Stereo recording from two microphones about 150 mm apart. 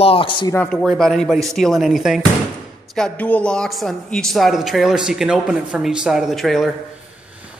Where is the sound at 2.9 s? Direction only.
5° left (ahead or behind).